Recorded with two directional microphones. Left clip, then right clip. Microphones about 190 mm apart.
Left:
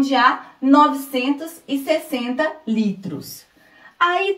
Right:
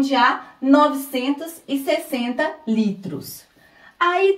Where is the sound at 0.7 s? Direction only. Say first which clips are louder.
Left 2 dB; 15° left (ahead or behind).